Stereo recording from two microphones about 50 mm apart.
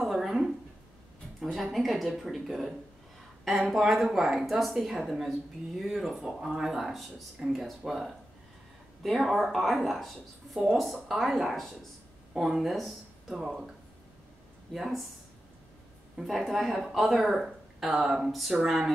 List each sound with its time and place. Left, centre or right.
0.1 s a sound: centre
1.4 s speech: centre
3.7 s speech: centre
13.3 s speech: centre
14.7 s speech: centre
16.3 s speech: centre